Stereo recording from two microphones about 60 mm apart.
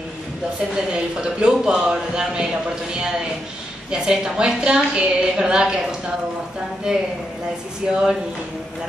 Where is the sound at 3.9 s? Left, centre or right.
Centre.